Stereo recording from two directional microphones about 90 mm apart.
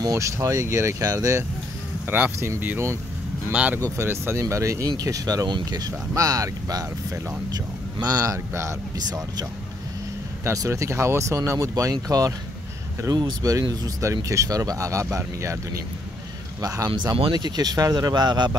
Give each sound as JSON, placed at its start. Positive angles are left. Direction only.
{"t": 0.0, "sound": "speech", "side_deg": -35}
{"t": 2.0, "sound": "speech", "side_deg": -20}
{"t": 3.5, "sound": "speech", "side_deg": -15}
{"t": 4.0, "sound": "speech", "side_deg": -25}
{"t": 10.4, "sound": "speech", "side_deg": -35}
{"t": 16.6, "sound": "speech", "side_deg": -40}